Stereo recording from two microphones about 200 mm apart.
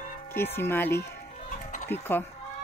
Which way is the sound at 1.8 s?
10° left (ahead or behind).